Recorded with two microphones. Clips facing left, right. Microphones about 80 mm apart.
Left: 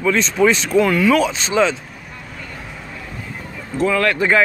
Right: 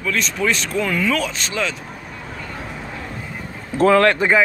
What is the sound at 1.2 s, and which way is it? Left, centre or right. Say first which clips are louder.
Speech: left 7 dB; left.